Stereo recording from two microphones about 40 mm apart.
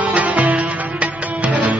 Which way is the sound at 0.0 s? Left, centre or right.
Right.